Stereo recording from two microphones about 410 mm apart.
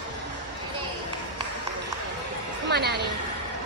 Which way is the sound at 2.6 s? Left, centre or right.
Right.